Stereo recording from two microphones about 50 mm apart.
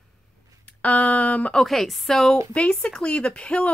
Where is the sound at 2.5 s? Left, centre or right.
Left.